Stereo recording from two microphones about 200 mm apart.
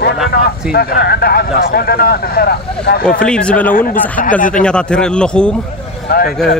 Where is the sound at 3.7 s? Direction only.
45° left (ahead or behind).